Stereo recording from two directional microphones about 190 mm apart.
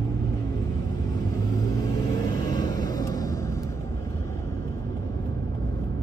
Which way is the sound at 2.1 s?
20° left (ahead or behind).